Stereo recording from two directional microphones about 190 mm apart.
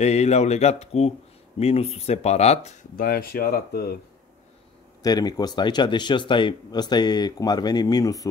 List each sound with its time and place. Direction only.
0.0 s speech: 35° left (ahead or behind)
3.1 s speech: 50° left (ahead or behind)
5.0 s speech: 20° left (ahead or behind)